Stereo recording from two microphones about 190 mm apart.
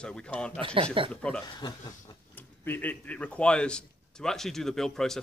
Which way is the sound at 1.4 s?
20° left (ahead or behind).